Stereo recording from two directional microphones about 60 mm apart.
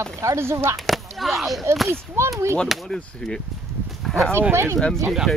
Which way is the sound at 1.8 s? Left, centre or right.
Right.